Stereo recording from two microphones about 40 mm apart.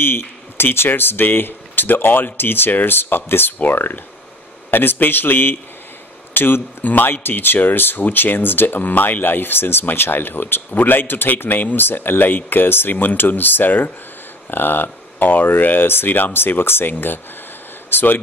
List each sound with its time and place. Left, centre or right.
0.0 s speech: left
6.8 s a man's voice: left
7.1 s speech: left
16.9 s a man's voice: left